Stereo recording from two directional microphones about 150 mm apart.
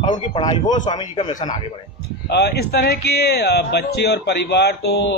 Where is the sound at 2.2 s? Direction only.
90° left.